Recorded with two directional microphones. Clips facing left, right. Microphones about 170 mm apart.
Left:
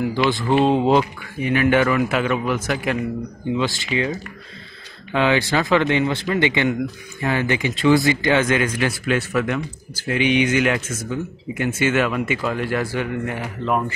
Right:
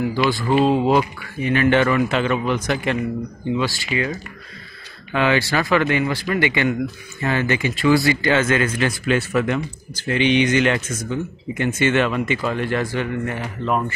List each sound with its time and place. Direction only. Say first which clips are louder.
0.0 s speech: even; 20° left (ahead or behind)
1.4 s speech: even; 15° left (ahead or behind)
3.5 s speech: left 1 dB; 20° left (ahead or behind)
9.0 s speech: right 3 dB; centre (ahead or behind)